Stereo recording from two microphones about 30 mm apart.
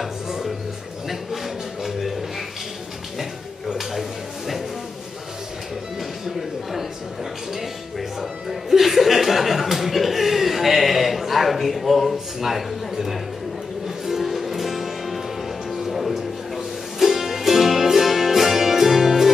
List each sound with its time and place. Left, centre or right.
1.0 s a sound: centre
8.2 s music: centre
11.5 s a man's voice: centre
13.8 s music: centre